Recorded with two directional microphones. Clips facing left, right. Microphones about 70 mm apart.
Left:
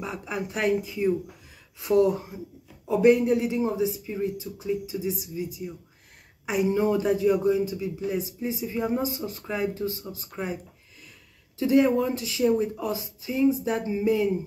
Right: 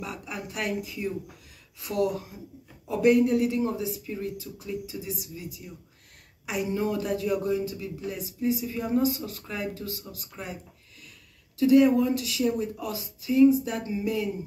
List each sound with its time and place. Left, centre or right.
0.0 s speech: left